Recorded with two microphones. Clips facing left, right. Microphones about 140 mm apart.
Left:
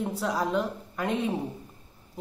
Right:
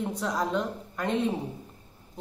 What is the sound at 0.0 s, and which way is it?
A woman's voice, 5° left (ahead or behind).